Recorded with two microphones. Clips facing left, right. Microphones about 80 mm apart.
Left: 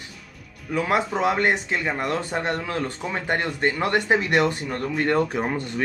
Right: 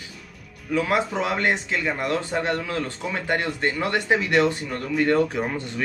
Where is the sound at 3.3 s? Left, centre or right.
Left.